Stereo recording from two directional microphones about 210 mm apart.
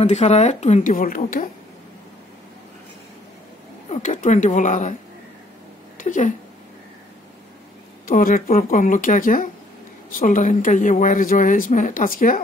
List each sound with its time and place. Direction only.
0.0 s speech: 30° left (ahead or behind)
3.9 s speech: 35° left (ahead or behind)
5.9 s speech: 35° left (ahead or behind)
8.1 s speech: 45° left (ahead or behind)